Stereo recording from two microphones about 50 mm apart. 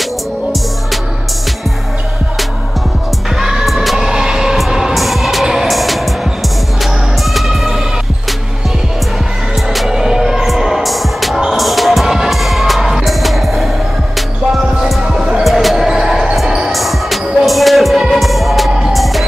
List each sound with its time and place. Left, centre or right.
3.3 s music: centre
4.1 s vehicle: centre
4.6 s music: centre
7.3 s music: centre
9.7 s music: centre
15.0 s music: centre
15.4 s basketball bounce: centre
16.7 s music: centre